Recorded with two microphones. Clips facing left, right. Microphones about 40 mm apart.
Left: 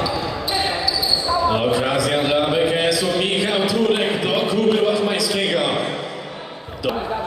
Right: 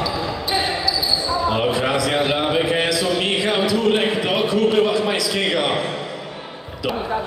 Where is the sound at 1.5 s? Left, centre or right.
Centre.